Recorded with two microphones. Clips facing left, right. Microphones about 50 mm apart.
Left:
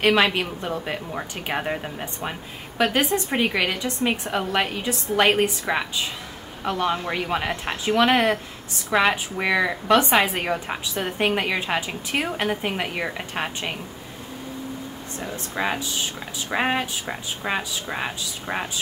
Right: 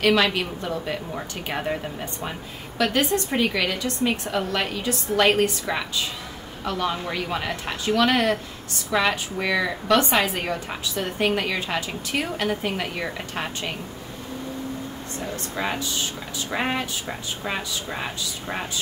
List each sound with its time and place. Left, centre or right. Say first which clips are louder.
0.0 s a woman's voice: left 1 dB; left
15.5 s a woman's voice: left 2 dB; centre